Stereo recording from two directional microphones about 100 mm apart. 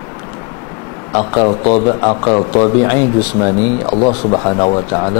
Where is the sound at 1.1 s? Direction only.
25° left (ahead or behind).